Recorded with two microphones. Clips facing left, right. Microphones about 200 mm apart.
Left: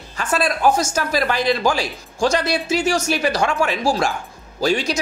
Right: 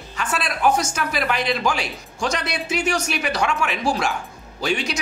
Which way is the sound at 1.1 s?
35° left (ahead or behind).